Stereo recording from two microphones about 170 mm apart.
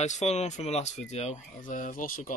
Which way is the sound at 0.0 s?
45° left (ahead or behind).